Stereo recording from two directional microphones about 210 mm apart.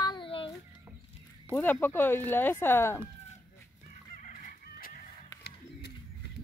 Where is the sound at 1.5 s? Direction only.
10° left (ahead or behind).